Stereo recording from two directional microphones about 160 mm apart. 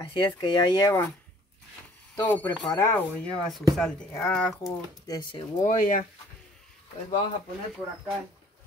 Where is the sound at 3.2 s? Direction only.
Centre (ahead or behind).